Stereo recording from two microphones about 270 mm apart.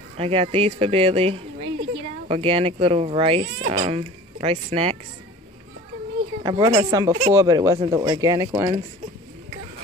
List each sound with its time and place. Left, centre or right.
0.2 s speech: right
6.4 s speech: centre